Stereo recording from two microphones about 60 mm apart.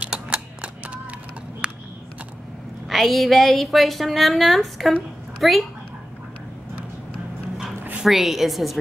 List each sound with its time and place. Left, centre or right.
0.0 s typewriter: centre
1.6 s a sound: centre
2.9 s a woman's voice: centre
8.0 s a woman's voice: centre